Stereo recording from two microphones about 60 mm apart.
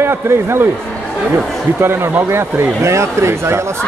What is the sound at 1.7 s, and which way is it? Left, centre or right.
A man's voice, right.